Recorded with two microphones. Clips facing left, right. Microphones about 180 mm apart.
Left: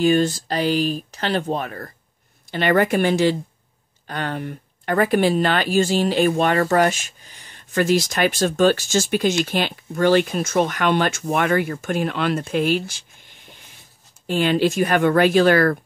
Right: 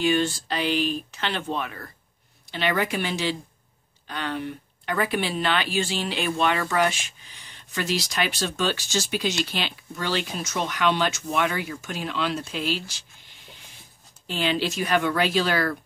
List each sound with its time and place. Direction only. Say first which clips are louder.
0.0 s speech: left 5 dB; 40° left (ahead or behind)